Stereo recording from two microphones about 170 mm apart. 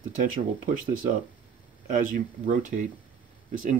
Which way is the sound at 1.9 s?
50° right (ahead or behind).